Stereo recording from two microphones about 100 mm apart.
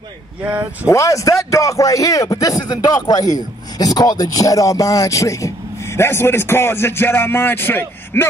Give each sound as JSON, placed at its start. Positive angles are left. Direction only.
{"t": 0.4, "sound": "speech", "side_deg": -20}
{"t": 0.8, "sound": "a man's voice", "side_deg": 35}
{"t": 5.9, "sound": "music", "side_deg": 25}